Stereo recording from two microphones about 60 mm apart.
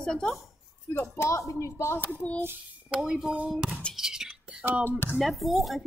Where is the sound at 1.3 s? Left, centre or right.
Left.